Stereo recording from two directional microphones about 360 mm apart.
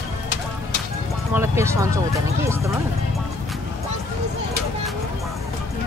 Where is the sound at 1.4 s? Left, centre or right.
Centre.